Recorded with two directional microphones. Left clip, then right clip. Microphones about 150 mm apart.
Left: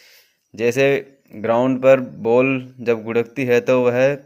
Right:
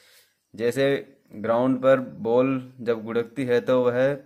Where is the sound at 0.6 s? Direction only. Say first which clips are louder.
Left 6 dB; 20° left (ahead or behind).